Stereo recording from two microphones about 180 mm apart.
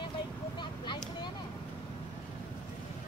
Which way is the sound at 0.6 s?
25° left (ahead or behind).